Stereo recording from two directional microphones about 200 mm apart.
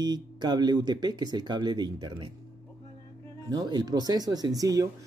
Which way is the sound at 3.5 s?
20° right (ahead or behind).